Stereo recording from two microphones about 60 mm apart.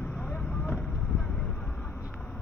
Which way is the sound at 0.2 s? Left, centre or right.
Left.